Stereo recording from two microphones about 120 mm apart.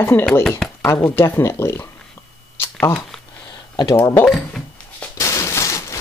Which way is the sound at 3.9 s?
20° left (ahead or behind).